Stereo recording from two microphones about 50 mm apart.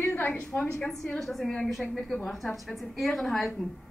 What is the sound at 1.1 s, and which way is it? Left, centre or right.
A woman's voice, centre.